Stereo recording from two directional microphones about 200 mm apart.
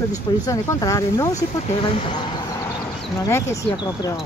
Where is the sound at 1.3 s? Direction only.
25° left (ahead or behind).